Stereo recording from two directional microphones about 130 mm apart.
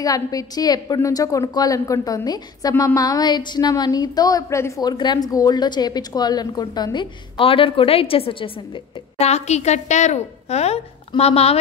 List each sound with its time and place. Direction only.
0.0 s a woman's voice: 25° left (ahead or behind); by 8.5 s 45° left (ahead or behind)
9.2 s a woman's voice: 55° left (ahead or behind)